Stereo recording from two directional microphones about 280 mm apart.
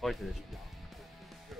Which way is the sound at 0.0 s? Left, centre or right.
Centre.